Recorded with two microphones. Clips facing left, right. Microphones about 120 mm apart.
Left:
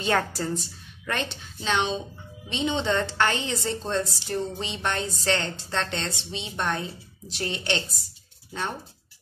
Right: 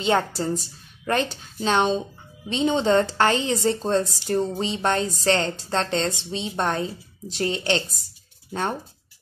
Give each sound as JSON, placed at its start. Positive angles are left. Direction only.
{"t": 0.0, "sound": "a woman's voice", "side_deg": -25}
{"t": 0.6, "sound": "a woman's voice", "side_deg": -35}